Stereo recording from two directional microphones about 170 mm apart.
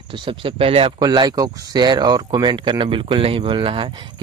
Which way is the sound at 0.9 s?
25° right (ahead or behind).